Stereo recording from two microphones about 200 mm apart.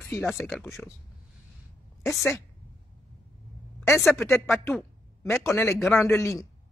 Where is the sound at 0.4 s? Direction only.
Centre (ahead or behind).